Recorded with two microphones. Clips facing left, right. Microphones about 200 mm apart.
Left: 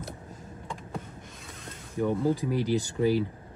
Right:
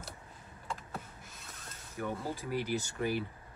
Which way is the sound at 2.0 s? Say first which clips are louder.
Left 11 dB; 15° left (ahead or behind).